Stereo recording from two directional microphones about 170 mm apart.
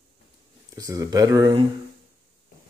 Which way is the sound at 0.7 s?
20° right (ahead or behind).